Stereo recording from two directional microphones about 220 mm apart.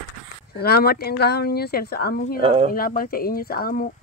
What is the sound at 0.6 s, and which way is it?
A woman's voice, 45° left (ahead or behind).